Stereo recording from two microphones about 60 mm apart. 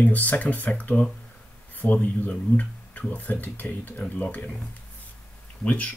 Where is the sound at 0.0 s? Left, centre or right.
Left.